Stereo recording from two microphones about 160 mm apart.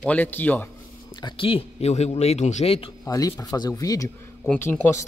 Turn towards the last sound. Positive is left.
turn(degrees=15)  # may be behind; listen again after turning